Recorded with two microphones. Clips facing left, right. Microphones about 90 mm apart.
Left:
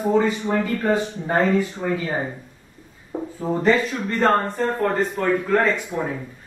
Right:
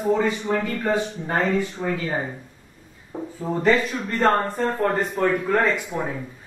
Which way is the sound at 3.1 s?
15° left (ahead or behind).